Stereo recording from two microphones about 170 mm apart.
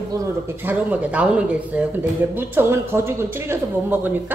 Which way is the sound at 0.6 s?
10° right (ahead or behind).